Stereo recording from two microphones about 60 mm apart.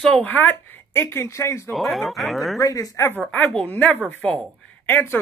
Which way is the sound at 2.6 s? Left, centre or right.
Left.